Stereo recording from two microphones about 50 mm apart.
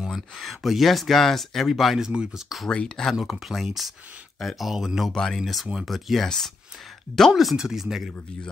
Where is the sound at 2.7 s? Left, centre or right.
Centre.